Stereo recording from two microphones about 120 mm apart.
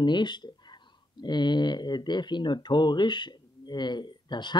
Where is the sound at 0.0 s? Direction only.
40° left (ahead or behind).